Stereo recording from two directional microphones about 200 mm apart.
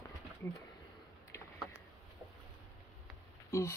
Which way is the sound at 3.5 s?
15° left (ahead or behind).